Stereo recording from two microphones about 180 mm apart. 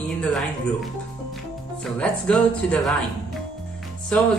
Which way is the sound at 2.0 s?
5° left (ahead or behind).